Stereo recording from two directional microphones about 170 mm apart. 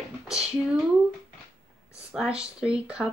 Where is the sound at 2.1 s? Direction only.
5° right (ahead or behind).